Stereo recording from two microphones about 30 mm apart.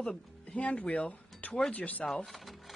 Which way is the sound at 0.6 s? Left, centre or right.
Left.